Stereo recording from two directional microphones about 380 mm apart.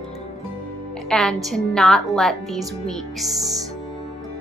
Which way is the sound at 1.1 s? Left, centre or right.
Centre.